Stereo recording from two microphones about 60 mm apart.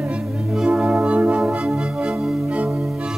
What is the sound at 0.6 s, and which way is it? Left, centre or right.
Music, right.